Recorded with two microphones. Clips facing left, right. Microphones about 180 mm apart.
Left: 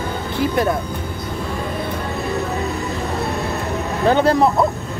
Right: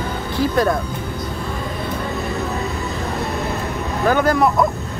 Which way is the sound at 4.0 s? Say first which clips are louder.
Left 1 dB; 25° left (ahead or behind).